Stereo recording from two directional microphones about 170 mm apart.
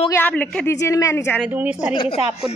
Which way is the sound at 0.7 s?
20° left (ahead or behind).